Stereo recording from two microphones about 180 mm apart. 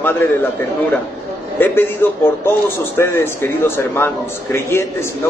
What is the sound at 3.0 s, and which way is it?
A man's voice, 15° left (ahead or behind).